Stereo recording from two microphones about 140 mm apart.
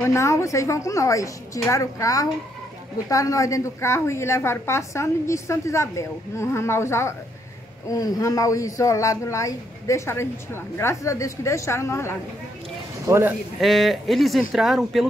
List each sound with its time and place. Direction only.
0.0 s speech: 20° left (ahead or behind)
13.0 s a man's voice: 15° right (ahead or behind)
13.6 s speech: centre (ahead or behind)